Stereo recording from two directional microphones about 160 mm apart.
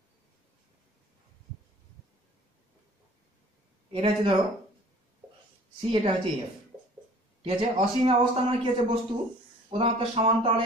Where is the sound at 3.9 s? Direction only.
35° right (ahead or behind).